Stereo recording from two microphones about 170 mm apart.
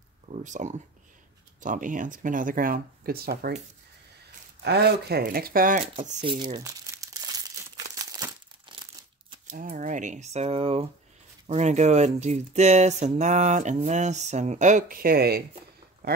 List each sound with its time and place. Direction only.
0.3 s speech: 45° right (ahead or behind); by 3.5 s 65° right (ahead or behind)
4.6 s speech: 75° right (ahead or behind); by 6.1 s 50° right (ahead or behind)
6.2 s speech: 30° right (ahead or behind)
6.6 s crumpling: 20° right (ahead or behind)
9.5 s speech: 55° right (ahead or behind)